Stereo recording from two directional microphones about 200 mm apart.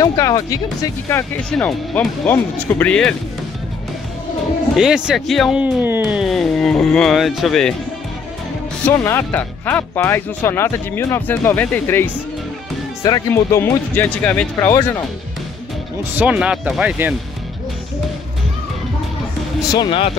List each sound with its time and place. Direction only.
0.0 s speech: 15° left (ahead or behind)
4.7 s speech: 5° right (ahead or behind)
8.8 s speech: 15° left (ahead or behind)
16.2 s speech: 5° right (ahead or behind)
19.7 s speech: 25° left (ahead or behind)